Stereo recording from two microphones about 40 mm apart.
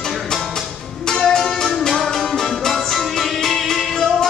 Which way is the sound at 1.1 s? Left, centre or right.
Centre.